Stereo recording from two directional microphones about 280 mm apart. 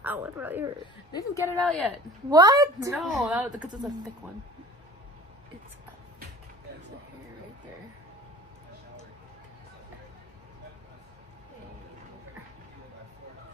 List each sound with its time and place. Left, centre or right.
0.0 s a woman's voice: centre
1.1 s speech: centre
2.2 s a woman's voice: centre